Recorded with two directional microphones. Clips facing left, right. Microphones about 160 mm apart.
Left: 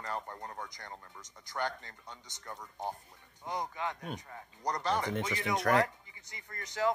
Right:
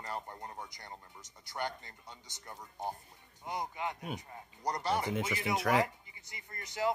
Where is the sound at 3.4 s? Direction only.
10° right (ahead or behind).